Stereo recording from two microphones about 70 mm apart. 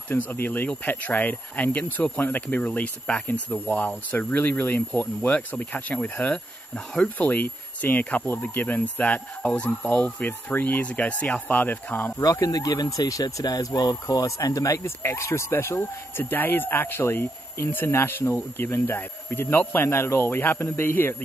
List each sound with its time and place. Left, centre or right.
0.1 s speech: left
12.2 s speech: left